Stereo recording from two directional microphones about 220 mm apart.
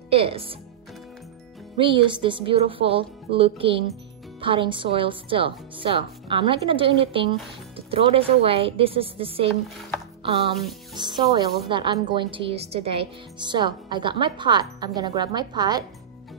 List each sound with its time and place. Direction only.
0.1 s a woman's voice: 25° right (ahead or behind)
1.8 s a woman's voice: 25° right (ahead or behind)
10.2 s music: 25° right (ahead or behind)
11.0 s a woman's voice: 20° right (ahead or behind)